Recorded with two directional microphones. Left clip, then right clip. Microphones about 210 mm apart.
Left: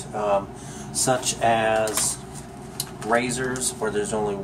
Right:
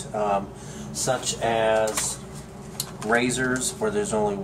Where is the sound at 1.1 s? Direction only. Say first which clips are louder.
Left 3 dB; 25° left (ahead or behind).